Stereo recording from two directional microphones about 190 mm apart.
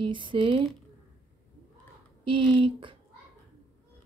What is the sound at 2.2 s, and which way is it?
Speech, 25° right (ahead or behind).